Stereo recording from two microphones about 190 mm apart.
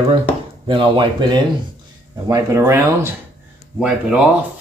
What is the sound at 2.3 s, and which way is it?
Speech, 15° right (ahead or behind).